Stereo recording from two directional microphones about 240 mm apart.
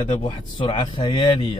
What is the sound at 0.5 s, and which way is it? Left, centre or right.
Speech, left.